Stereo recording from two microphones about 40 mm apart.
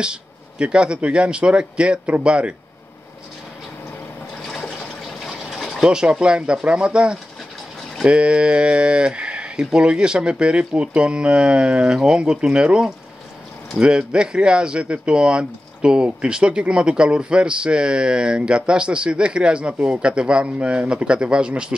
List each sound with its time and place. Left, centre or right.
0.0 s a man's voice: right
5.2 s fill: centre
5.8 s speech: right
13.7 s a man's voice: right